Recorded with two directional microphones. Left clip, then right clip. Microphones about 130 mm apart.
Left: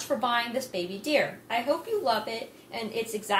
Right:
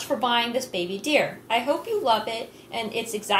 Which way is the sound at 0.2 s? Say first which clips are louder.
Right 4 dB; 35° right (ahead or behind).